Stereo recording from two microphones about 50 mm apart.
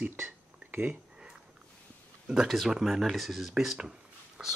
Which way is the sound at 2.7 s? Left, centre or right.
Centre.